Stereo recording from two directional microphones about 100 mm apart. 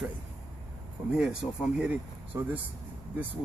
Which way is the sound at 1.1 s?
5° right (ahead or behind).